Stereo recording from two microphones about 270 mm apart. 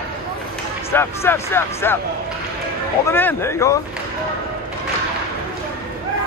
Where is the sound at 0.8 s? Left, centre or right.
Centre.